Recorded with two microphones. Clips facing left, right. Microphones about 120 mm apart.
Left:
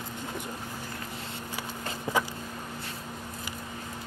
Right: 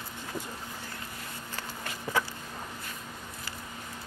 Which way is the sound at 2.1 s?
15° left (ahead or behind).